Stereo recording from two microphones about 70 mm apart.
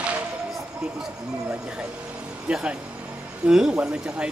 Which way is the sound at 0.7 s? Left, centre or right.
Centre.